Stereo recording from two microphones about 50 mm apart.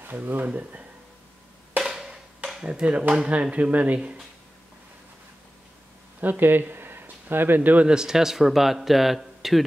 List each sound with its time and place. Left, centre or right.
0.0 s speech: right
1.8 s percussion: centre
2.6 s speech: right
6.2 s speech: right
7.8 s speech: centre